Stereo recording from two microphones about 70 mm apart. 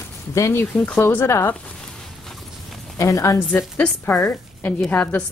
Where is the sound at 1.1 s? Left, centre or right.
Left.